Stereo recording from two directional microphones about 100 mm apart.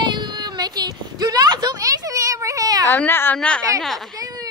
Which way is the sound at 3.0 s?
20° left (ahead or behind).